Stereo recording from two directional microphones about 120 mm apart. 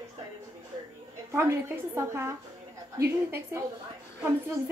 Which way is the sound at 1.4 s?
25° right (ahead or behind).